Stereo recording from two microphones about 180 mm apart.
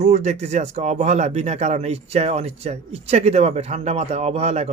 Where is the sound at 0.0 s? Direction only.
40° right (ahead or behind).